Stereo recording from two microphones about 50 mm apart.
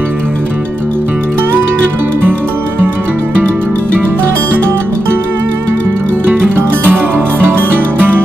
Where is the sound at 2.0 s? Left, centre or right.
Right.